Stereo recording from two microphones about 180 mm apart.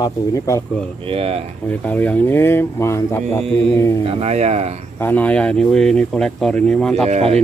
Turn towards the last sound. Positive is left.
turn(degrees=-35)  # may be behind; listen again after turning